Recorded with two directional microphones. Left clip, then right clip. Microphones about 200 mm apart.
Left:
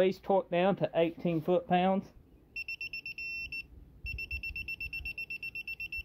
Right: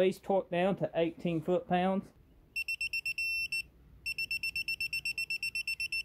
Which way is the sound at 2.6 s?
20° right (ahead or behind).